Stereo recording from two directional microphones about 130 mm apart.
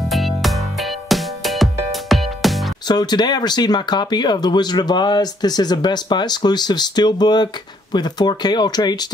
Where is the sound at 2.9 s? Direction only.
35° left (ahead or behind).